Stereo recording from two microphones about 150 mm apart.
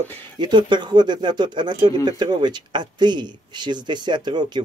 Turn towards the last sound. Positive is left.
turn(degrees=-30)  # may be behind; listen again after turning